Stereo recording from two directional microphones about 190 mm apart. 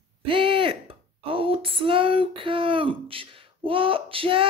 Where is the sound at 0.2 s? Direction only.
30° right (ahead or behind).